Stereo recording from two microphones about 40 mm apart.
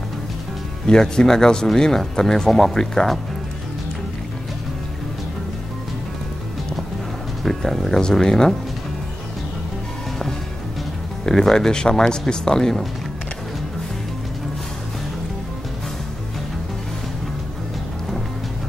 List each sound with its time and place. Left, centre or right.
0.8 s speech: centre
7.4 s speech: centre
11.2 s speech: centre